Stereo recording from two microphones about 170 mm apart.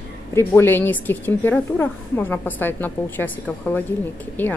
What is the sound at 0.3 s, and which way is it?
A woman's voice, 15° left (ahead or behind).